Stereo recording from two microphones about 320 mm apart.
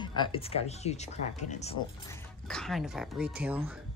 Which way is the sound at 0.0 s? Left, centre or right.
Centre.